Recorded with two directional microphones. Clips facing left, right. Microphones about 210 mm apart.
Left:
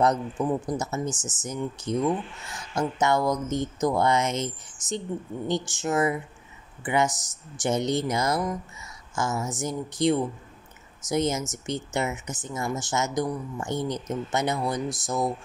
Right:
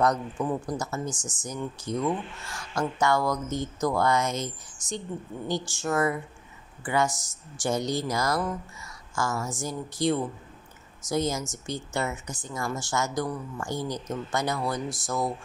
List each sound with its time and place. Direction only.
0.0 s speech: 25° left (ahead or behind)